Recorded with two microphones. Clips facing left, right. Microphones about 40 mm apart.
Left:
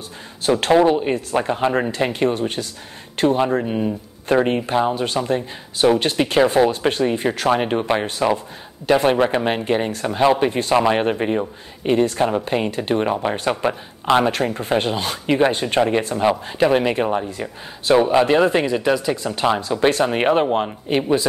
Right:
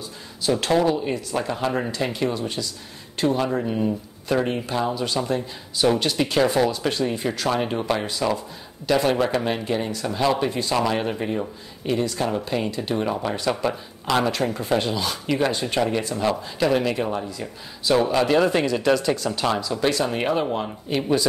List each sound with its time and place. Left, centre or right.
0.6 s speech: left
3.3 s speech: left
4.9 s speech: left
17.3 s speech: left
17.9 s speech: left
19.6 s speech: left